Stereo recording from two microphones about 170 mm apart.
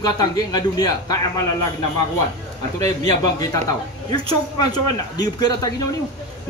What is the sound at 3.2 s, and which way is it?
A man's voice, 25° left (ahead or behind).